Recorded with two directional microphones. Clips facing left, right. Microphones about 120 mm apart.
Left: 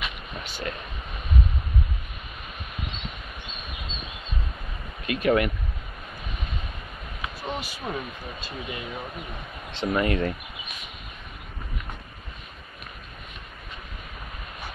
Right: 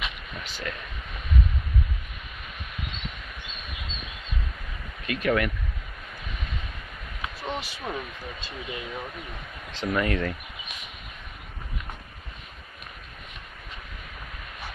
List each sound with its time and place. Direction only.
0.6 s speech: 25° left (ahead or behind)
5.0 s speech: 20° left (ahead or behind)
7.4 s speech: 5° left (ahead or behind)
8.5 s speech: 20° left (ahead or behind)